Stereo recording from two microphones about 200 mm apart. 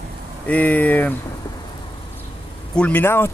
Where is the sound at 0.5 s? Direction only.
10° left (ahead or behind).